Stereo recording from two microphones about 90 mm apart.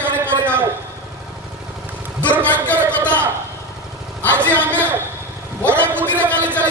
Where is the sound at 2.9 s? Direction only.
15° left (ahead or behind).